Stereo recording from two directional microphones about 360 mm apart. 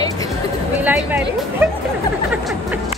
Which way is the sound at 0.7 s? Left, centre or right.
Centre.